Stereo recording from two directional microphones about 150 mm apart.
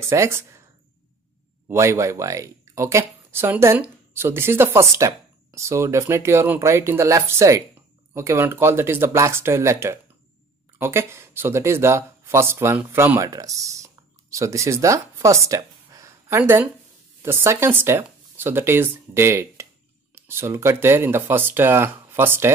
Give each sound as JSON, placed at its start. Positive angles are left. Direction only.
{"t": 0.1, "sound": "speech", "side_deg": -20}
{"t": 1.7, "sound": "speech", "side_deg": -20}